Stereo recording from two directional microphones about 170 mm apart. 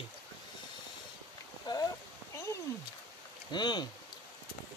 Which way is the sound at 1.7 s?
25° left (ahead or behind).